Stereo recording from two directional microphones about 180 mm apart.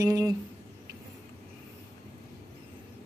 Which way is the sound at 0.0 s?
20° right (ahead or behind).